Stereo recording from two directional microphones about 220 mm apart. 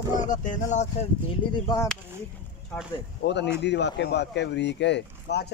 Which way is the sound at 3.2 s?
50° left (ahead or behind).